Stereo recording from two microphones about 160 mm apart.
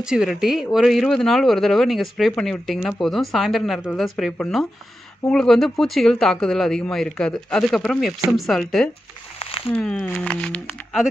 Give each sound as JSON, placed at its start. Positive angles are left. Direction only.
{"t": 0.0, "sound": "speech", "side_deg": -5}
{"t": 9.4, "sound": "a sound", "side_deg": 35}
{"t": 9.8, "sound": "speech", "side_deg": 5}